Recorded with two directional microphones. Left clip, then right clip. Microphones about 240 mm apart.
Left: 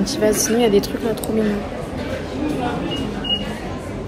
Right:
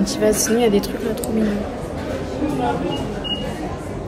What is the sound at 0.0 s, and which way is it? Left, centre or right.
Speech, centre.